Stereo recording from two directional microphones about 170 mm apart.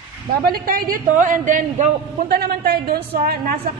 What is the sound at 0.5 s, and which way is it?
A woman's voice, 55° right (ahead or behind).